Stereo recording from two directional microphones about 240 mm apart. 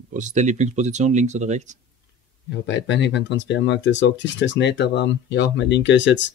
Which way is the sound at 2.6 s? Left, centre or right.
Left.